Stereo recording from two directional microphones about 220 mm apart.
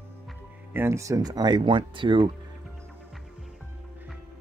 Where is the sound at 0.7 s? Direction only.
10° right (ahead or behind).